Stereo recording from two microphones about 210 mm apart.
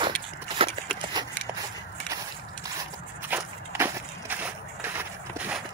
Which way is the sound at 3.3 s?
10° right (ahead or behind).